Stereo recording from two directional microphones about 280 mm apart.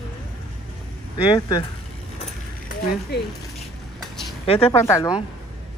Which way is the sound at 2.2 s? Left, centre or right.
Left.